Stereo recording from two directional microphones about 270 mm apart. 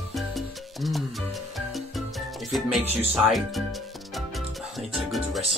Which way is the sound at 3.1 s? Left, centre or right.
Centre.